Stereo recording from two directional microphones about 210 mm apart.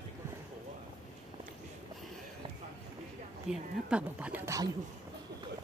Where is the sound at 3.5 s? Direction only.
5° right (ahead or behind).